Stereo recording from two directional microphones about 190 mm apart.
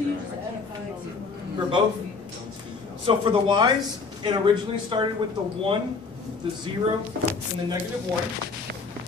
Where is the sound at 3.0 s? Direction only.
25° right (ahead or behind).